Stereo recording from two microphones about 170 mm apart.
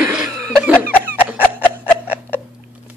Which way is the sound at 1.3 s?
10° right (ahead or behind).